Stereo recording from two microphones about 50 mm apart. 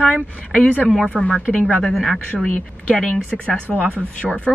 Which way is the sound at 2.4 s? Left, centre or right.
Left.